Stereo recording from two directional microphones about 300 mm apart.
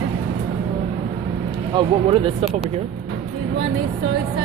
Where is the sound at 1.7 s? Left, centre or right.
Centre.